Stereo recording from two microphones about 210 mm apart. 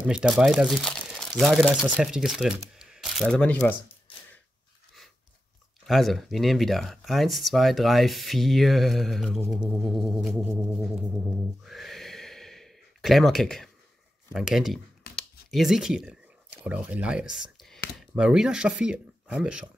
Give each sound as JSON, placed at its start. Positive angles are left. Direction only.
{"t": 0.0, "sound": "speech", "side_deg": -5}
{"t": 2.7, "sound": "a sound", "side_deg": 0}
{"t": 5.9, "sound": "speech", "side_deg": 0}
{"t": 11.6, "sound": "gasp", "side_deg": 0}
{"t": 14.3, "sound": "speech", "side_deg": 0}